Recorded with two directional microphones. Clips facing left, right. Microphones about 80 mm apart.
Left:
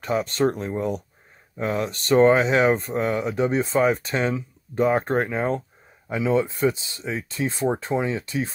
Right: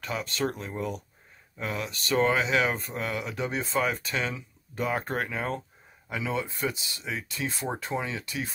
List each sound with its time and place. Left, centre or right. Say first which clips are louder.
0.0 s speech: left 8 dB; left
3.7 s speech: left 7 dB; left